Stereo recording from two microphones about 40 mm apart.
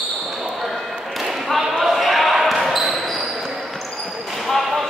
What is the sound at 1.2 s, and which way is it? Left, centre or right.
Basketball bounce, centre.